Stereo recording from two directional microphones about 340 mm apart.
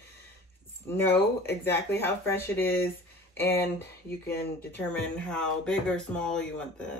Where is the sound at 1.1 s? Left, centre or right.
Left.